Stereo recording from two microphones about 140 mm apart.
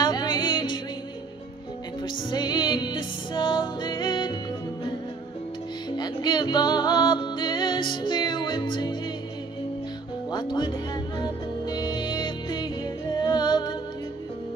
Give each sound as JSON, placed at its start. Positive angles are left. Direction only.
{"t": 0.0, "sound": "music", "side_deg": 30}
{"t": 2.3, "sound": "music", "side_deg": 30}
{"t": 5.9, "sound": "music", "side_deg": 30}
{"t": 10.3, "sound": "music", "side_deg": 30}